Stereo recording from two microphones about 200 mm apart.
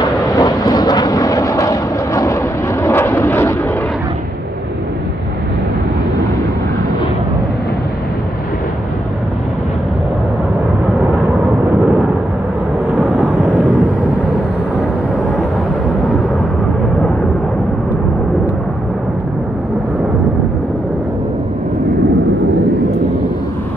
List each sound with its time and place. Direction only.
0.4 s vehicle: 20° left (ahead or behind)
11.8 s a sound: 5° right (ahead or behind)
13.1 s vehicle: centre (ahead or behind)